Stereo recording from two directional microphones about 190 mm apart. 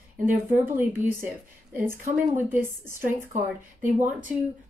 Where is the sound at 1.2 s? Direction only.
15° right (ahead or behind).